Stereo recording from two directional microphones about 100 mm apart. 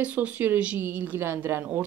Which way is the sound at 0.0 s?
15° right (ahead or behind).